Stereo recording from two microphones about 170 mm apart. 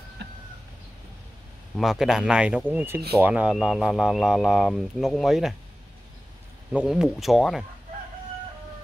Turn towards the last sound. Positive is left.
turn(degrees=0)  # may be behind; listen again after turning